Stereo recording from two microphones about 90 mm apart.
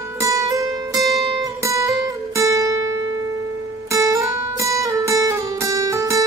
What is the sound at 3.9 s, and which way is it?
Music, 35° right (ahead or behind).